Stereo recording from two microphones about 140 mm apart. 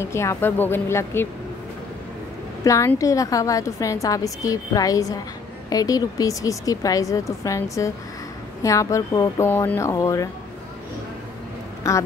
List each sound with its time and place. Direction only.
0.0 s speech: 20° left (ahead or behind)
2.6 s a woman's voice: 25° left (ahead or behind)